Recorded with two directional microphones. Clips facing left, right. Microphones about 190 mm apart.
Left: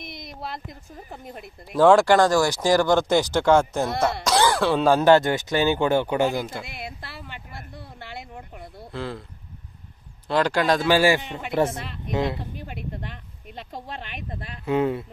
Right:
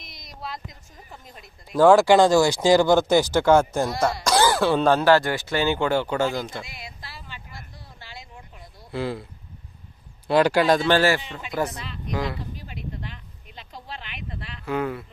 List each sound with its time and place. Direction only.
0.0 s a sound: 55° left (ahead or behind)
1.7 s speech: centre (ahead or behind)
2.1 s speech: 15° right (ahead or behind)
4.9 s speech: 20° left (ahead or behind)
6.6 s a sound: 60° left (ahead or behind)
8.9 s speech: 10° right (ahead or behind)
10.2 s speech: 10° right (ahead or behind)
10.9 s speech: 15° left (ahead or behind)
11.7 s speech: 55° left (ahead or behind)
12.1 s speech: 25° left (ahead or behind)
12.5 s speech: 55° left (ahead or behind)
14.6 s speech: 25° left (ahead or behind)